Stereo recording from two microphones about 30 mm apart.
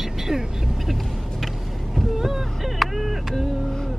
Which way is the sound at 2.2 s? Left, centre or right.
Centre.